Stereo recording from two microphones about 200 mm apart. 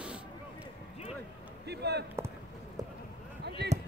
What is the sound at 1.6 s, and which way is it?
Speech, 55° right (ahead or behind).